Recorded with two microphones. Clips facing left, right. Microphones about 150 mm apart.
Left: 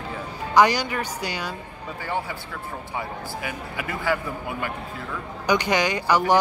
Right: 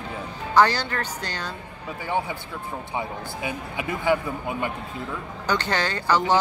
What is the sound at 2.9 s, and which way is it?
A man's voice, 20° right (ahead or behind).